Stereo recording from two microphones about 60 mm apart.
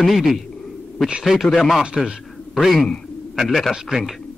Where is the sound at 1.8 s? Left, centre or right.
Centre.